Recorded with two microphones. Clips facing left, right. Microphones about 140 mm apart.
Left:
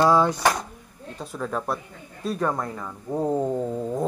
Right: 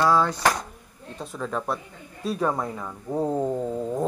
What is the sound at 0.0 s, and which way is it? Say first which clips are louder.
Speech: left 2 dB; 15° left (ahead or behind).